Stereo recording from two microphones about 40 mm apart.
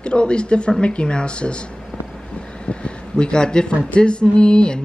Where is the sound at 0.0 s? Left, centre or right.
Left.